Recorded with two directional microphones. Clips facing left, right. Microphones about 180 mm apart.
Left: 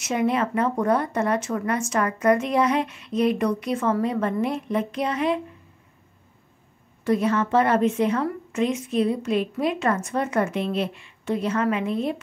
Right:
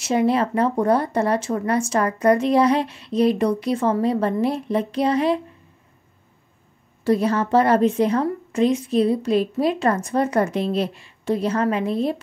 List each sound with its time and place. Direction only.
0.0 s speech: 35° right (ahead or behind)
7.1 s speech: 35° right (ahead or behind)